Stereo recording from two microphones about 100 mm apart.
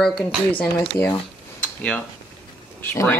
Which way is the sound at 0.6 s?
20° left (ahead or behind).